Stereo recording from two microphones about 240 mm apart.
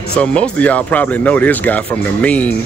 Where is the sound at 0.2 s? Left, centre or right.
Centre.